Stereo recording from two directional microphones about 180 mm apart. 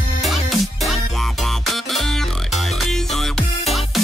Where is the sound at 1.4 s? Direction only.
Centre (ahead or behind).